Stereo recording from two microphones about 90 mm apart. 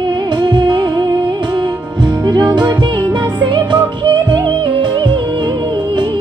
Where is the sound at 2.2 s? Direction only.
55° right (ahead or behind).